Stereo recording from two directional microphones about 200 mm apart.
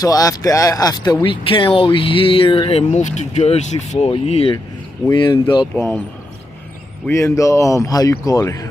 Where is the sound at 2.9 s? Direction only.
35° left (ahead or behind).